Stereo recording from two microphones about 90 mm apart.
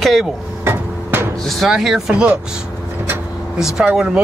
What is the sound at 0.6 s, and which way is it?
Hammer, 25° right (ahead or behind).